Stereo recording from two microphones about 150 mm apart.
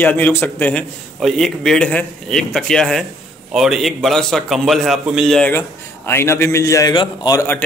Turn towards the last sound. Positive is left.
turn(degrees=20)  # may be behind; listen again after turning